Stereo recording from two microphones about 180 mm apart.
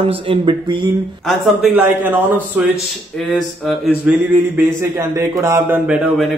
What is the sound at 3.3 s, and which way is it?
Speech, centre (ahead or behind).